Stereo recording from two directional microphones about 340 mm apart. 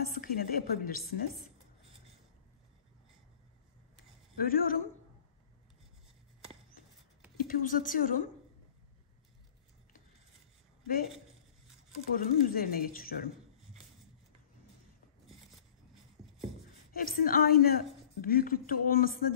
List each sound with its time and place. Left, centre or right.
0.1 s a woman's voice: left
4.4 s a woman's voice: left
7.4 s a woman's voice: left
12.2 s a woman's voice: left
16.9 s a woman's voice: left